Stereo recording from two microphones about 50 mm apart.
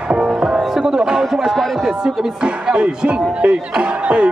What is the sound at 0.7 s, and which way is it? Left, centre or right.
Speech, centre.